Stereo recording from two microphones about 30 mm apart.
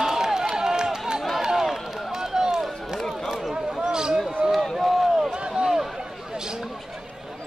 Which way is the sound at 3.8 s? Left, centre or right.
Right.